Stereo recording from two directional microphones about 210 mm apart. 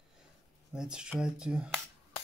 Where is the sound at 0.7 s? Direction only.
5° right (ahead or behind).